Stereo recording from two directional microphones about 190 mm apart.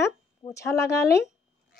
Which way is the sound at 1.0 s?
60° left (ahead or behind).